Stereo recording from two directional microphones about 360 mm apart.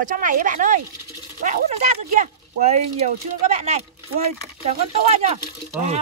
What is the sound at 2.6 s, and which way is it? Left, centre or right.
Speech, centre.